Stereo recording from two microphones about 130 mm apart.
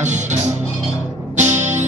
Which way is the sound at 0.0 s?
65° right (ahead or behind).